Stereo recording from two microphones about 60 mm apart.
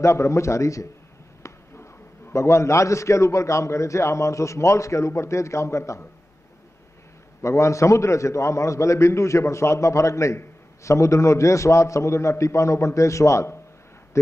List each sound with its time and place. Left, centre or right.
0.0 s a man's voice: left
2.3 s a man's voice: left
7.4 s a man's voice: left